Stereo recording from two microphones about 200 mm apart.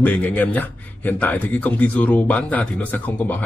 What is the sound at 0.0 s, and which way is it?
A man's voice, 10° left (ahead or behind).